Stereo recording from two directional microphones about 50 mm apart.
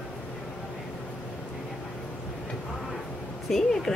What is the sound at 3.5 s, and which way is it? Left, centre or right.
Speech, centre.